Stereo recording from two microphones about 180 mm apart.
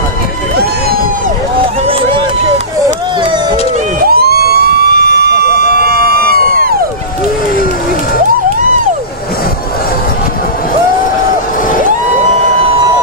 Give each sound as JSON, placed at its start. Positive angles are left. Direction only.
{"t": 1.9, "sound": "run", "side_deg": -30}
{"t": 4.0, "sound": "vehicle", "side_deg": -60}